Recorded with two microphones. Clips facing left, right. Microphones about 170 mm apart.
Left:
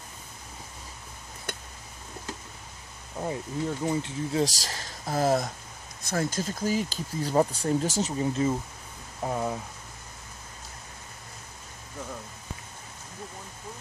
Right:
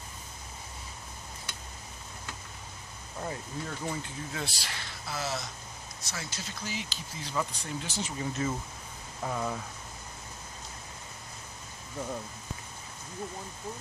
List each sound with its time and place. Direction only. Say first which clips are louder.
3.2 s speech: left 6 dB; 20° left (ahead or behind)
4.3 s speech: left 10 dB; 35° left (ahead or behind)